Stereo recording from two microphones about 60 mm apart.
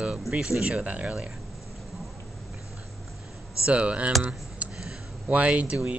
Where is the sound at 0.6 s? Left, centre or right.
Right.